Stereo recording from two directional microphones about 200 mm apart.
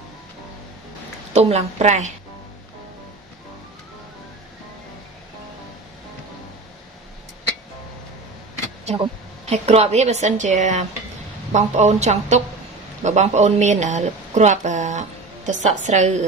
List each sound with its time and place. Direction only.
1.3 s speech: 30° right (ahead or behind)
8.8 s a woman's voice: 30° right (ahead or behind)